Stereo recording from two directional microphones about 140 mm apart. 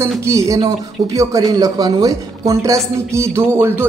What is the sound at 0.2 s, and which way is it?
Speech, 20° right (ahead or behind).